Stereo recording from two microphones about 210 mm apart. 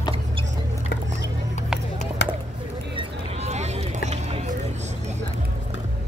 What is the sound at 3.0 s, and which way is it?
Music, 30° right (ahead or behind).